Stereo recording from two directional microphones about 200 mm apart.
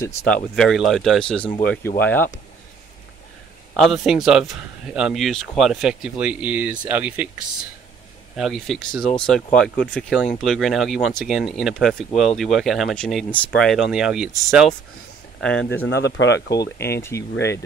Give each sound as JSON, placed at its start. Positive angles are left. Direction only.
{"t": 0.3, "sound": "speech", "side_deg": 0}
{"t": 3.7, "sound": "speech", "side_deg": 0}
{"t": 8.4, "sound": "speech", "side_deg": 0}
{"t": 15.4, "sound": "speech", "side_deg": 5}
{"t": 15.8, "sound": "speech", "side_deg": 60}
{"t": 17.1, "sound": "speech", "side_deg": 15}